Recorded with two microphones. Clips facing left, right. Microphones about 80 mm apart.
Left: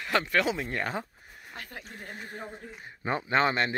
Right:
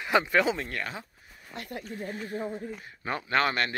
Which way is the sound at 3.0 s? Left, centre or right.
Centre.